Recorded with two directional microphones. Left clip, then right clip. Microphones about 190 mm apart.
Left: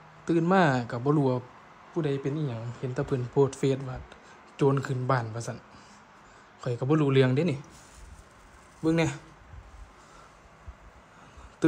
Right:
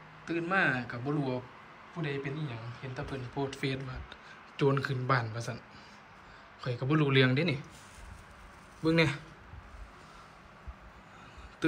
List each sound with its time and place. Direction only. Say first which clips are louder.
0.2 s speech: left 6 dB; 30° left (ahead or behind); by 5.6 s 15° left (ahead or behind)
6.6 s speech: left 4 dB; 15° left (ahead or behind)
8.8 s speech: left 1 dB; 10° left (ahead or behind)